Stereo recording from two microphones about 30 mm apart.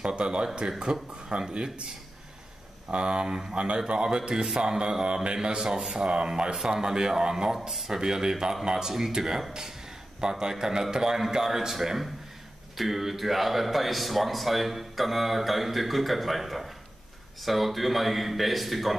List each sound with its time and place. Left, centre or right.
0.0 s speech: right
2.9 s speech: right
3.3 s speech: centre
3.5 s speech: right
7.5 s a man's voice: centre